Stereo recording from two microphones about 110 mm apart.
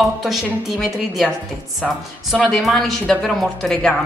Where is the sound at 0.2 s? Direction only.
Centre (ahead or behind).